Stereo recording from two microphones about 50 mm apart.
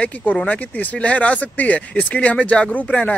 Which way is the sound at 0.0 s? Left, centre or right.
Left.